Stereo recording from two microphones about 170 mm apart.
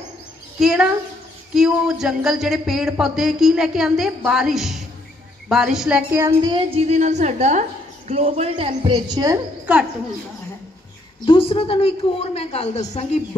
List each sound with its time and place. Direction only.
0.6 s a woman's voice: 5° right (ahead or behind)
6.4 s a woman's voice: 30° right (ahead or behind)
9.7 s a woman's voice: 5° right (ahead or behind)
11.2 s a woman's voice: 30° left (ahead or behind)